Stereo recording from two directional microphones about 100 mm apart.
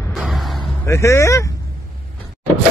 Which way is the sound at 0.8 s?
30° left (ahead or behind).